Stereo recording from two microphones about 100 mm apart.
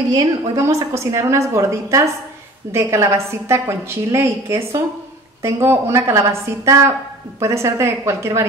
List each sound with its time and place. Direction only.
0.6 s a woman's voice: 30° right (ahead or behind)